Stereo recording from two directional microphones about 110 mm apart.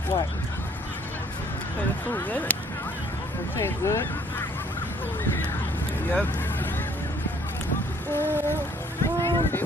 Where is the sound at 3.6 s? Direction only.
25° left (ahead or behind).